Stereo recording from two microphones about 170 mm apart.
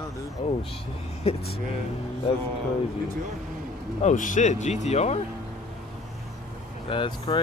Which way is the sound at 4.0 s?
45° left (ahead or behind).